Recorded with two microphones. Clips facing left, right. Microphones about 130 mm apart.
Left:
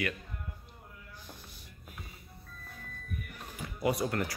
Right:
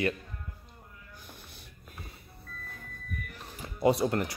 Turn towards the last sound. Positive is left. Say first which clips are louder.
# right 5 dB
turn(degrees=-25)  # may be behind; listen again after turning